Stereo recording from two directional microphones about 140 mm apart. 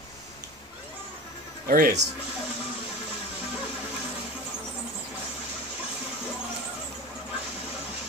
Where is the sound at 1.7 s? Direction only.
90° right.